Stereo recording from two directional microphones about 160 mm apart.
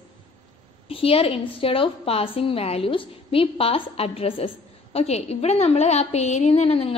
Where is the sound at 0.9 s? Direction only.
35° left (ahead or behind).